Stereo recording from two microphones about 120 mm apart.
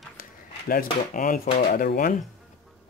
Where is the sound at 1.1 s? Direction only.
90° left.